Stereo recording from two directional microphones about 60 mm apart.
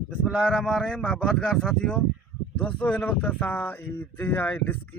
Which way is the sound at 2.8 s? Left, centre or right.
Left.